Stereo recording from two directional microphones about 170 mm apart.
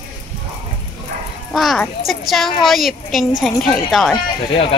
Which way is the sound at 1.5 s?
Centre (ahead or behind).